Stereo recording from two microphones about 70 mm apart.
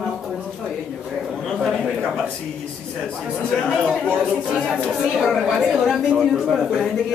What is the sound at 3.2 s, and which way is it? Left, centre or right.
A woman's voice, centre.